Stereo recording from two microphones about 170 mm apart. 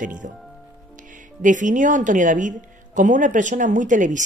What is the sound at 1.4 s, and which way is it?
Speech, 50° right (ahead or behind).